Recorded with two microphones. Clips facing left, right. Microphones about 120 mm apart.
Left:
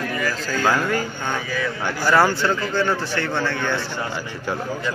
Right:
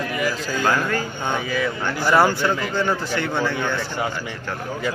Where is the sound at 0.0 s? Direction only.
10° right (ahead or behind).